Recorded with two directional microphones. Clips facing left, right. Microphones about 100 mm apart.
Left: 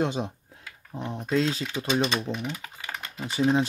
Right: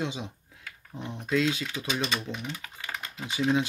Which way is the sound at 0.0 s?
45° left (ahead or behind).